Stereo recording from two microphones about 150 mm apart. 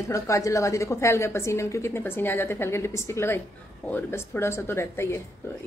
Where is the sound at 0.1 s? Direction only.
20° left (ahead or behind).